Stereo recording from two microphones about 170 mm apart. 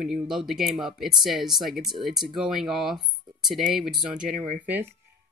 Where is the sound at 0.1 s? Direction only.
Centre (ahead or behind).